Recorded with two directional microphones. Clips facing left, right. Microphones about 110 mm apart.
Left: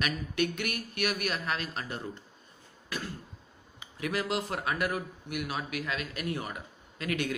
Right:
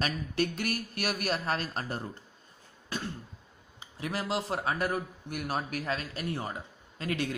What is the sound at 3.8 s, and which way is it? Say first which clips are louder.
Speech: left 2 dB; 30° right (ahead or behind).